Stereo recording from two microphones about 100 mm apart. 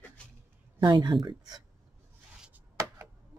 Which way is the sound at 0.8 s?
50° right (ahead or behind).